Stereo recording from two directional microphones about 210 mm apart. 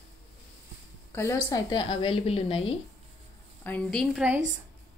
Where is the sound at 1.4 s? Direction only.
20° left (ahead or behind).